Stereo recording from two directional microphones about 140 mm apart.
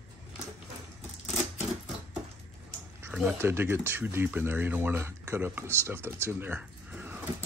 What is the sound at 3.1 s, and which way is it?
Speech, 15° right (ahead or behind).